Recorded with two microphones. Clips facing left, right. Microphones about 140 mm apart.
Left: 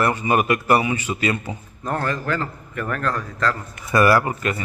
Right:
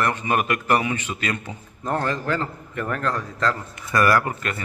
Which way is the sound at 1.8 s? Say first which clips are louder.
Even; 25° right (ahead or behind).